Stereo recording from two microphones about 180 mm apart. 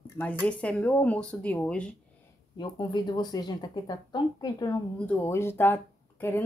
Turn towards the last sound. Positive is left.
turn(degrees=10)  # may be behind; listen again after turning